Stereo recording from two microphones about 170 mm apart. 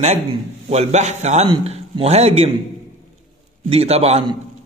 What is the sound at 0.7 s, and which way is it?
A man's voice, 40° right (ahead or behind).